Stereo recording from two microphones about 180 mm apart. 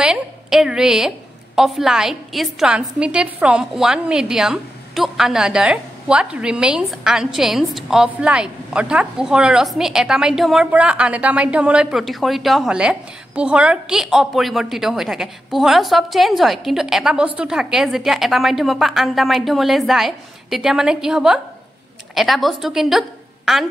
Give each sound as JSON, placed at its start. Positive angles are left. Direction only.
{"t": 0.0, "sound": "a woman's voice", "side_deg": -5}